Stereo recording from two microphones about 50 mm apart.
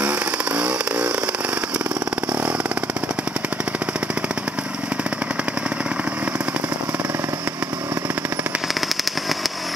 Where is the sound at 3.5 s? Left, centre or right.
Right.